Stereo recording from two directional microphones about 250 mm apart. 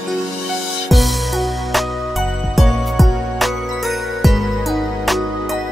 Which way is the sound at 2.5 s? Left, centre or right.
Centre.